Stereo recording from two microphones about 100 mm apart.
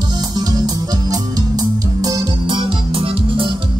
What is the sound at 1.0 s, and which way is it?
Music, 40° right (ahead or behind).